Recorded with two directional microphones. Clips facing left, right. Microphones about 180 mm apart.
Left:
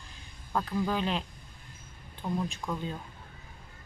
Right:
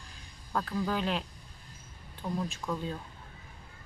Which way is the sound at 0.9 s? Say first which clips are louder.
Right 1 dB; centre (ahead or behind).